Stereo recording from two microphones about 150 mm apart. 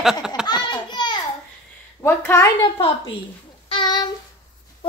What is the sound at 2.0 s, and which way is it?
Speech, 15° left (ahead or behind).